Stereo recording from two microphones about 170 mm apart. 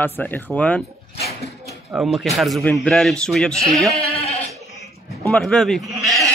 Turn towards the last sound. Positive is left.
turn(degrees=0)  # may be behind; listen again after turning